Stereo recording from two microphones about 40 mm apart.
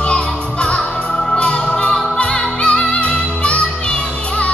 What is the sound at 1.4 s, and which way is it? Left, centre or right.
Music, left.